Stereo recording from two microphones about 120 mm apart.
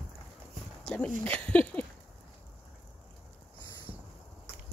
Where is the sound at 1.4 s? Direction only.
10° left (ahead or behind).